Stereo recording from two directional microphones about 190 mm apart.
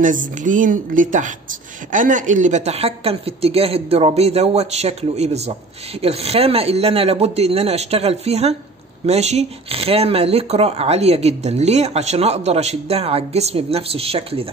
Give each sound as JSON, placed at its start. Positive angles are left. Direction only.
{"t": 0.0, "sound": "a woman's voice", "side_deg": -45}